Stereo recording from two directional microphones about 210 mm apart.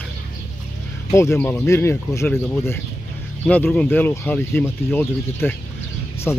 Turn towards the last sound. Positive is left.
turn(degrees=10)  # may be behind; listen again after turning